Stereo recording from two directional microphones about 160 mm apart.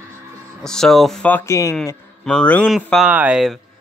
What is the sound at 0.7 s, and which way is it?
Speech, 5° left (ahead or behind).